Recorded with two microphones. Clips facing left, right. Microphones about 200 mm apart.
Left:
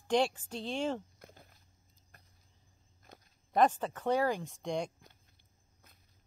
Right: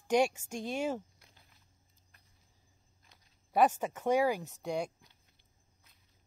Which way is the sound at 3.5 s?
10° right (ahead or behind).